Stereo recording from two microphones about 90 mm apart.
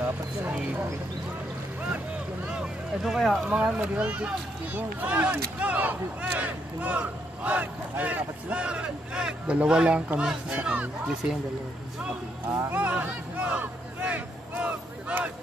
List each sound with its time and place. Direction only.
0.0 s dog: 20° right (ahead or behind)
1.8 s vehicle: 15° right (ahead or behind)
3.4 s speech: 15° right (ahead or behind)
12.7 s a sound: 20° right (ahead or behind)